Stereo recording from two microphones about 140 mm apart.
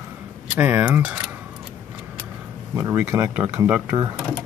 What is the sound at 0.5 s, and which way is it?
Speech, 10° right (ahead or behind).